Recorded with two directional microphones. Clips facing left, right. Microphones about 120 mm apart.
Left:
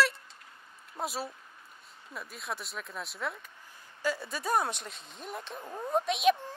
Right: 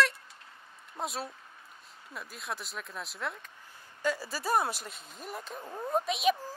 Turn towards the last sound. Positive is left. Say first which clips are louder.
# left 2 dB
turn(degrees=0)  # may be behind; listen again after turning